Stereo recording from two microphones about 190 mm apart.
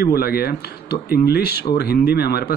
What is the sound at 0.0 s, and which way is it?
Speech, 55° left (ahead or behind).